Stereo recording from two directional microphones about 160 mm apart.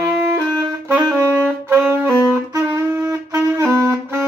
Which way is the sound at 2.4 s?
25° right (ahead or behind).